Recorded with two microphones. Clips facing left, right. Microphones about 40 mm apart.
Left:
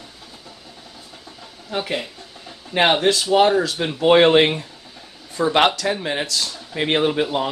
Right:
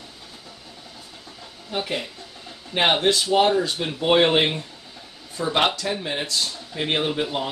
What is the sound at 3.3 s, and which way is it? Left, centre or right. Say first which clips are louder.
Speech: left 5 dB; left.